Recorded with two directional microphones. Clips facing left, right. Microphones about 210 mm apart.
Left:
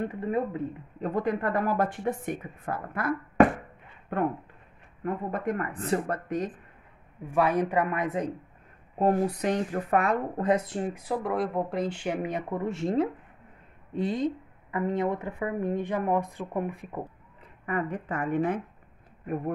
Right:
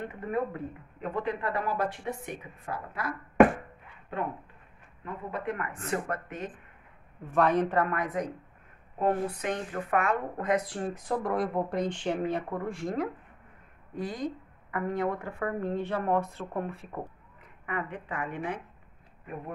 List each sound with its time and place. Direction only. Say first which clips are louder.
0.1 s speech: left 3 dB; 25° left (ahead or behind)
1.0 s speech: left 4 dB; 45° left (ahead or behind)
7.2 s speech: even; 10° left (ahead or behind)
8.9 s speech: left 4 dB; 35° left (ahead or behind); by 11.0 s 20° left (ahead or behind)
11.1 s speech: right 1 dB; centre (ahead or behind)
17.6 s speech: left 5 dB; 40° left (ahead or behind)